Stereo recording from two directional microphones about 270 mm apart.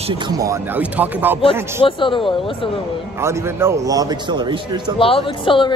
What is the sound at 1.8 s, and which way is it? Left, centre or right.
Speech, centre.